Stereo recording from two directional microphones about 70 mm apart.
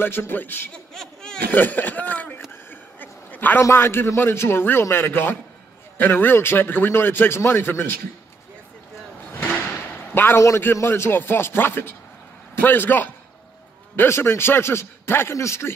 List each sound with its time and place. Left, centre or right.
0.0 s a man's voice: left
0.9 s a sound: centre
1.5 s speech: left
2.5 s a sound: left
3.6 s a man's voice: left
10.1 s a man's voice: left